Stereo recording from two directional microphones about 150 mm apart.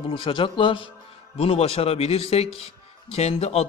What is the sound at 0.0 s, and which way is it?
A man's voice, 35° left (ahead or behind).